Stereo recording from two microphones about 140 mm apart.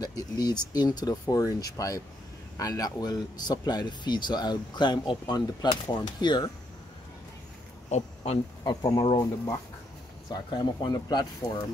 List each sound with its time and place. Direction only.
0.0 s speech: 30° left (ahead or behind)
7.9 s speech: 50° left (ahead or behind)
8.6 s speech: 25° left (ahead or behind)